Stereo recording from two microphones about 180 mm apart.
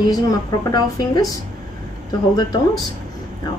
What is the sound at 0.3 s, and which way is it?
Speech, 20° left (ahead or behind).